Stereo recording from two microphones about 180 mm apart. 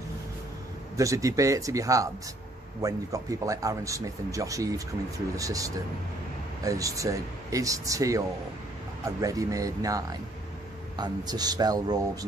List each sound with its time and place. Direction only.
0.9 s speech: 20° right (ahead or behind)